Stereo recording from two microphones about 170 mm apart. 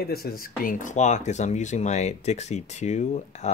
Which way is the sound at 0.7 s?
50° left (ahead or behind).